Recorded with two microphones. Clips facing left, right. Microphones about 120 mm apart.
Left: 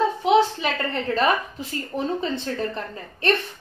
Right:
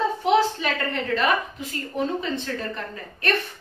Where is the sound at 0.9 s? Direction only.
35° left (ahead or behind).